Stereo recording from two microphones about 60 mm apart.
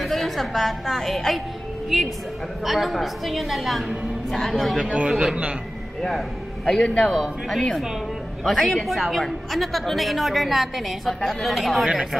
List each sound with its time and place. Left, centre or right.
0.0 s a woman's voice: centre
4.8 s a man's voice: centre
6.0 s a woman's voice: centre